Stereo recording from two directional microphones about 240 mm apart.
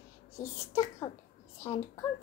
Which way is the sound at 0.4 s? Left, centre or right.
Centre.